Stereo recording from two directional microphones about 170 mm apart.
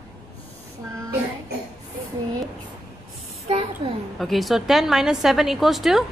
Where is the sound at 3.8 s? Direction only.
30° right (ahead or behind).